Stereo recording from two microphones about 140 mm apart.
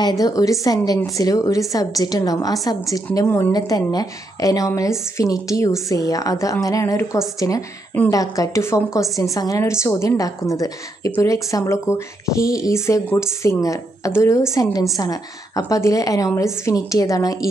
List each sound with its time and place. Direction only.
0.0 s a woman's voice: 25° left (ahead or behind)
3.3 s a woman's voice: 15° left (ahead or behind)
3.5 s a woman's voice: 25° left (ahead or behind)